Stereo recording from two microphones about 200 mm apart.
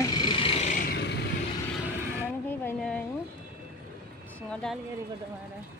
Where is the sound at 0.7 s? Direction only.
45° left (ahead or behind).